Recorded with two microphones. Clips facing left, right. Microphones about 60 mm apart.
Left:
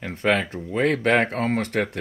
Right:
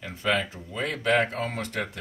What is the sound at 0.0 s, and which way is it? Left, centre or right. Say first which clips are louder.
Speech: left 4 dB; left.